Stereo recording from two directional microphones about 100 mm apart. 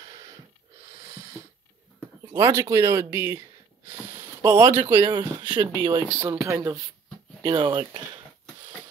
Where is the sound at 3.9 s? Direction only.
30° right (ahead or behind).